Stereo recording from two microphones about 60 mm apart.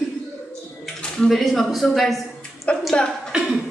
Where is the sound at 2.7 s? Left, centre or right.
Centre.